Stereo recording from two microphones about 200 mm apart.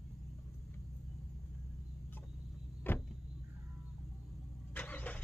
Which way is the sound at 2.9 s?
10° left (ahead or behind).